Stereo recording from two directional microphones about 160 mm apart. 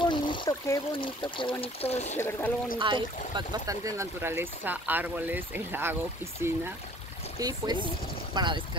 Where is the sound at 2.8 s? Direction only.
30° right (ahead or behind).